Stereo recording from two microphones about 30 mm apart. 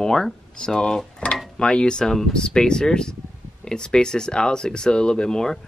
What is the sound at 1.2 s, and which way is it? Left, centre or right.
Speech, left.